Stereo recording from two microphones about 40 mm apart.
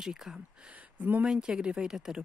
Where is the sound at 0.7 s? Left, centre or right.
Right.